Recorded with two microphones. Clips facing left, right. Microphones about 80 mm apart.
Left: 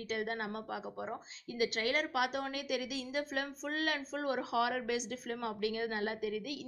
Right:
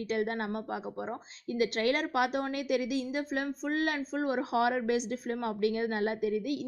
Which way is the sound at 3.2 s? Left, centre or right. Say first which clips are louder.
Right 4 dB; right.